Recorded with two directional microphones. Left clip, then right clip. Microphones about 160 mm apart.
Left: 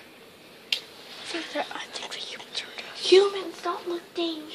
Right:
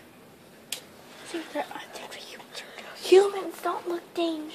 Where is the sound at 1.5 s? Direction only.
5° right (ahead or behind).